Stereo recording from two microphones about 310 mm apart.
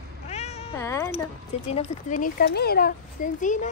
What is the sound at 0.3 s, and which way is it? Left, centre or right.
Meow, left.